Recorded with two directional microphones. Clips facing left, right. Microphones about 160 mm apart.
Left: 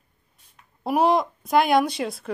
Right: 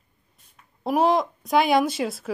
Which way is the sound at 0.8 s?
Centre (ahead or behind).